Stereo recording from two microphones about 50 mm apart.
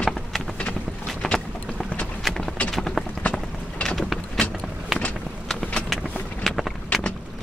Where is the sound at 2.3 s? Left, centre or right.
Centre.